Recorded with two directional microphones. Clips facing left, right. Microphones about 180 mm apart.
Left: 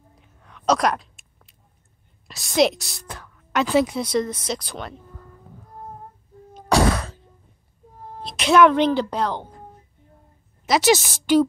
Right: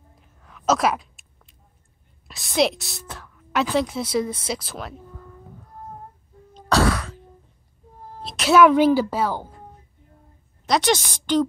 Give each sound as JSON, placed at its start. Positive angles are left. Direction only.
{"t": 0.2, "sound": "a sound", "side_deg": 0}
{"t": 2.2, "sound": "a woman's voice", "side_deg": 0}
{"t": 6.5, "sound": "throat clearing", "side_deg": 15}
{"t": 8.2, "sound": "speech", "side_deg": 0}
{"t": 10.6, "sound": "a woman's voice", "side_deg": 5}